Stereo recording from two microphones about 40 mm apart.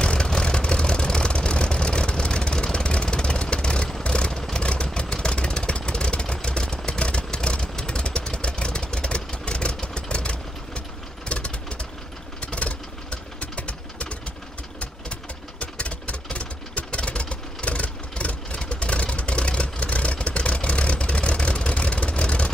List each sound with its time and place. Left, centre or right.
0.0 s vehicle: left
15.6 s vehicle: left